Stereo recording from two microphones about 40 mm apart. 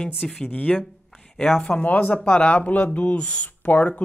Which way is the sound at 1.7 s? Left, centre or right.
Left.